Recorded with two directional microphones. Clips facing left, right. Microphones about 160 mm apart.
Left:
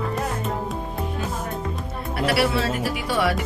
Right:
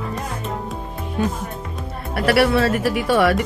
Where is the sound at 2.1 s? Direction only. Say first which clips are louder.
Right 5 dB; 60° right (ahead or behind).